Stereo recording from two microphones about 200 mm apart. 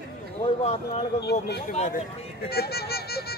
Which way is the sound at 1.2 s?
55° left (ahead or behind).